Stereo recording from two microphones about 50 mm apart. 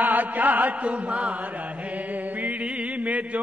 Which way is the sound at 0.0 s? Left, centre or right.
Right.